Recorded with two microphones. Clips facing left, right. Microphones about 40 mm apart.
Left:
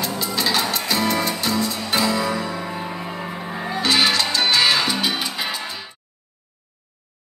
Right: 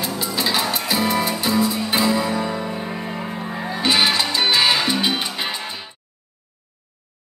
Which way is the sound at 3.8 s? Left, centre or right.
Centre.